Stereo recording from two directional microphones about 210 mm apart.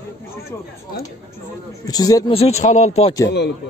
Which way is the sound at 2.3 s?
30° left (ahead or behind).